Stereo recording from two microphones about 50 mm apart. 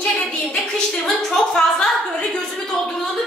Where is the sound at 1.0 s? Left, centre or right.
Centre.